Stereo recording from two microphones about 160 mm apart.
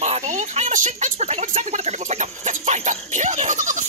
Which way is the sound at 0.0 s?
45° right (ahead or behind).